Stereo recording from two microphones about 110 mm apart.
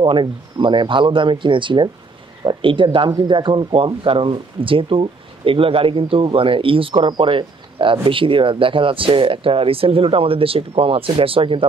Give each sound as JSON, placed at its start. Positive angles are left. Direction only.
{"t": 0.0, "sound": "speech", "side_deg": -50}